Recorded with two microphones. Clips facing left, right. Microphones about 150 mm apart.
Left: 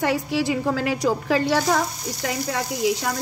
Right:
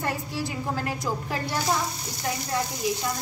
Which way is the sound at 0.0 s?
80° left.